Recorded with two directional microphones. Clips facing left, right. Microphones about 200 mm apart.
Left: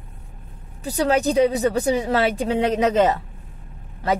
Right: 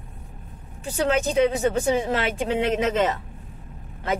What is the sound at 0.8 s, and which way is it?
Speech, 35° left (ahead or behind).